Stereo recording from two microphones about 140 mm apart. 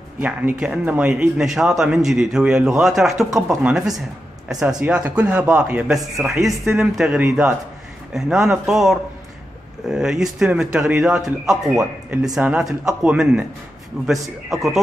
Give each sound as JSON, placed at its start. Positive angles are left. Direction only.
{"t": 0.2, "sound": "speech", "side_deg": -10}